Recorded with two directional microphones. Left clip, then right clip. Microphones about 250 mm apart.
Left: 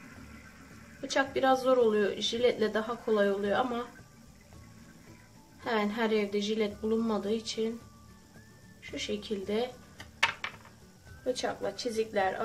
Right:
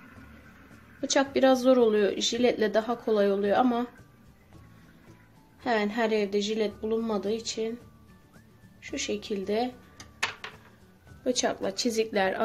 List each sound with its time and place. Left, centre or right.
1.0 s speech: right
5.6 s speech: right
8.9 s speech: right
11.2 s speech: right